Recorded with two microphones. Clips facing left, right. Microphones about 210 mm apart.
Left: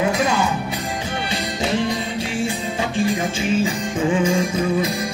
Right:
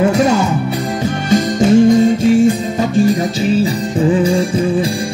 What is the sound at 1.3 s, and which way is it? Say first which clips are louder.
Music: right 14 dB; 45° right (ahead or behind).